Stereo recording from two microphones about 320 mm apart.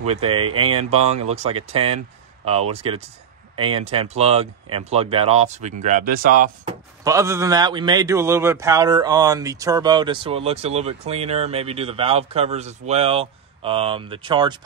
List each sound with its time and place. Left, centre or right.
0.0 s a man's voice: centre
0.5 s speech: right
0.7 s speech: centre
7.1 s a man's voice: centre